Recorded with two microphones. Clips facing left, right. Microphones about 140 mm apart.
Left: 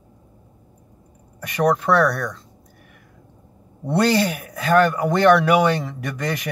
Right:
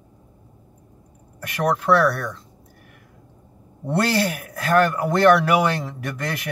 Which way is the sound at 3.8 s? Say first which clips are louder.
Left 3 dB; 5° right (ahead or behind).